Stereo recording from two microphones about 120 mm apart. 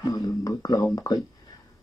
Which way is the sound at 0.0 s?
30° left (ahead or behind).